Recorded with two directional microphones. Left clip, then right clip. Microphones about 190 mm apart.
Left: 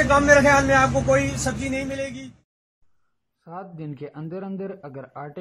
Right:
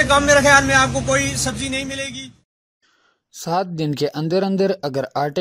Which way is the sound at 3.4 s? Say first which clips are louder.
Right 15 dB; 40° right (ahead or behind).